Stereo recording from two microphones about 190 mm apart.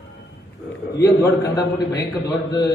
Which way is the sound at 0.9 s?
20° left (ahead or behind).